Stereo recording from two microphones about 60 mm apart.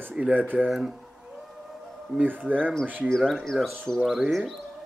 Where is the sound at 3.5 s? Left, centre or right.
Centre.